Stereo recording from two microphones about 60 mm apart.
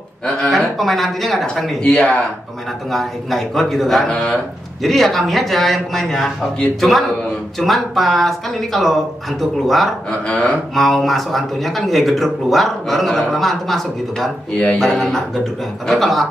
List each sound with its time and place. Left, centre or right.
0.4 s speech: centre
1.8 s speech: centre
2.9 s speech: centre
10.2 s a sound: left
10.7 s speech: centre